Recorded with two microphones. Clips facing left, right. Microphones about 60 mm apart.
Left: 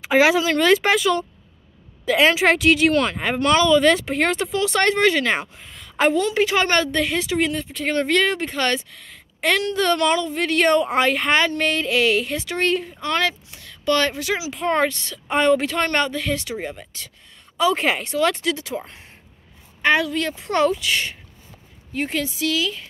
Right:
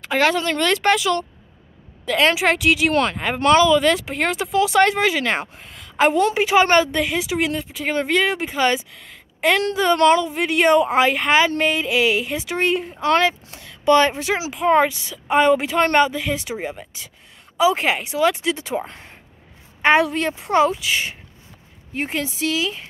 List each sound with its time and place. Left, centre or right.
0.0 s speech: centre
3.3 s speech: right
3.6 s speech: centre
5.6 s a sound: centre
6.3 s a woman's voice: centre
9.9 s a woman's voice: right
12.4 s speech: centre
14.5 s a woman's voice: centre
18.5 s speech: right
18.9 s speech: right
19.8 s speech: right
20.5 s a woman's voice: centre
21.9 s speech: right